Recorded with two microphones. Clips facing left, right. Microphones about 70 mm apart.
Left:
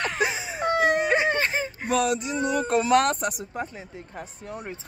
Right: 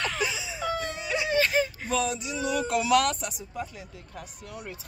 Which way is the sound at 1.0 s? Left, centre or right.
Left.